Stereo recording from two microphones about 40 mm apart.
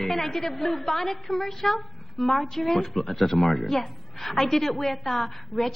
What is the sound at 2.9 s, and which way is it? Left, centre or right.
A woman's voice, centre.